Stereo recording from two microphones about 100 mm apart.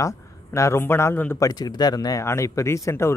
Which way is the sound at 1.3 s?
40° left (ahead or behind).